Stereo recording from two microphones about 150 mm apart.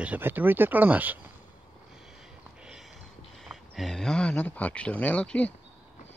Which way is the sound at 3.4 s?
Centre (ahead or behind).